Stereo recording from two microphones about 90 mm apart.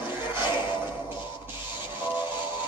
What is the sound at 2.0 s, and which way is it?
Music, 20° right (ahead or behind).